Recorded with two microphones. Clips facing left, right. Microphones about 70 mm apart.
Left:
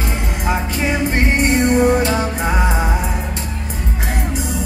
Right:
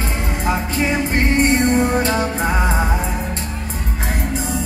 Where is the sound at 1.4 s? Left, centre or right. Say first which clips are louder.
Left 2 dB; right.